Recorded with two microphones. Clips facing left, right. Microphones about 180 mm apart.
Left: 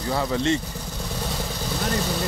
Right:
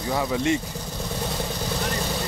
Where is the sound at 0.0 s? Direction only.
10° right (ahead or behind).